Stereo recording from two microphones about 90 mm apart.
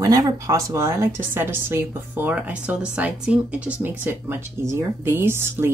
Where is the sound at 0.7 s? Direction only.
30° right (ahead or behind).